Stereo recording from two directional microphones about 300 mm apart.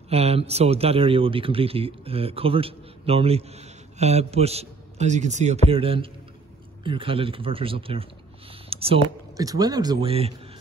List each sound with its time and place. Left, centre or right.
0.1 s a man's voice: centre
8.6 s a sound: centre
9.4 s speech: centre